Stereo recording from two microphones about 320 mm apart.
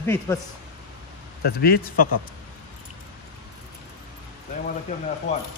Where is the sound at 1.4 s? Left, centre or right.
Left.